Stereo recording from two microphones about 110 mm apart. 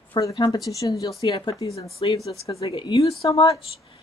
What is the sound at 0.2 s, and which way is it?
Speech, 35° left (ahead or behind).